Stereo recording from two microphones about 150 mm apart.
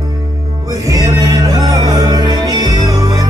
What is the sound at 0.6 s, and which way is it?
Music, 25° right (ahead or behind).